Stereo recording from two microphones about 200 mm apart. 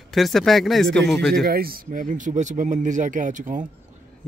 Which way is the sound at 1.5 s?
50° right (ahead or behind).